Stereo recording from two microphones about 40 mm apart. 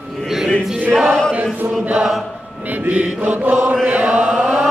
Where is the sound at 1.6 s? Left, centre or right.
Right.